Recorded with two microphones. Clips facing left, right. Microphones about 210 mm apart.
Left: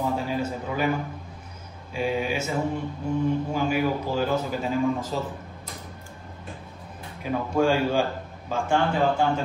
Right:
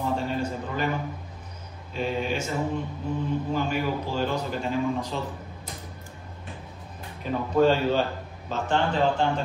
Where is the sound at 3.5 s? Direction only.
5° left (ahead or behind).